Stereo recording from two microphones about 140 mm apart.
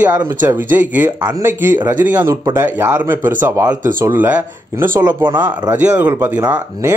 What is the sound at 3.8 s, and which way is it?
Speech, 75° right (ahead or behind).